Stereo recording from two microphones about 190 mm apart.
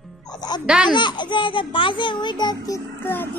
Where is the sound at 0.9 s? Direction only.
25° left (ahead or behind).